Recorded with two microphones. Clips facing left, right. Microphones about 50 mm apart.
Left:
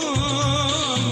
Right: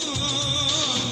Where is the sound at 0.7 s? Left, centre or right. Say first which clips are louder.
Left 3 dB; centre.